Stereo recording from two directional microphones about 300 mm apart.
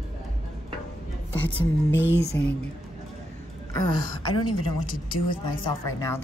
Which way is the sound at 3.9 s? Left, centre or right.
Centre.